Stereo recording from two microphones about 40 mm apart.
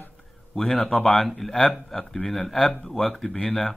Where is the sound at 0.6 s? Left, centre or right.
Centre.